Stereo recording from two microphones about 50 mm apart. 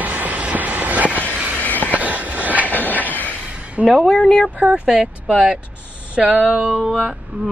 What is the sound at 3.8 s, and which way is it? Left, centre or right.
Speech, centre.